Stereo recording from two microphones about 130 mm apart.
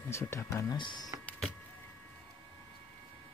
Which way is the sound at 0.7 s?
35° left (ahead or behind).